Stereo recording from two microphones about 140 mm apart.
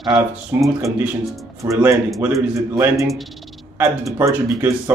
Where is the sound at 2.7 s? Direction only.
20° right (ahead or behind).